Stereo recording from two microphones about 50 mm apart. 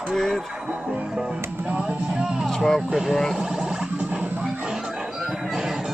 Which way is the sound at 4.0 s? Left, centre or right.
Right.